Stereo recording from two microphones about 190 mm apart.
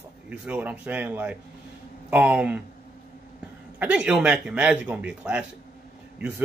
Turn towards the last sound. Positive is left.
turn(degrees=-5)  # may be behind; listen again after turning